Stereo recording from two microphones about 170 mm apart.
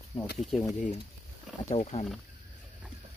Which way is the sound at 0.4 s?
Centre (ahead or behind).